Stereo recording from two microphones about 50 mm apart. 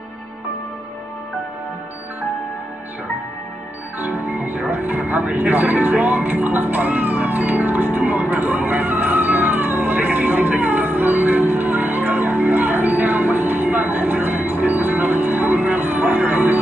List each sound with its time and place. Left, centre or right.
4.0 s music: right